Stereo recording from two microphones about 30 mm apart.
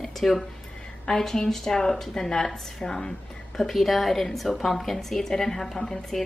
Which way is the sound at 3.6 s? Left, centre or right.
Centre.